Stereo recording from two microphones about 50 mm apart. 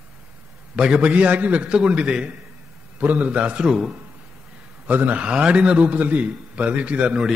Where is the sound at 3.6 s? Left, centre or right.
Centre.